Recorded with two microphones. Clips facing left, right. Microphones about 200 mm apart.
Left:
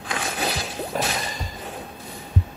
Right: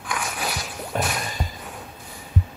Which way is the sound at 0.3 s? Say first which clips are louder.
Left 3 dB; 30° left (ahead or behind).